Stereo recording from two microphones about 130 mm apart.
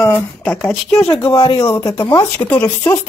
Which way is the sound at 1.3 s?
40° left (ahead or behind).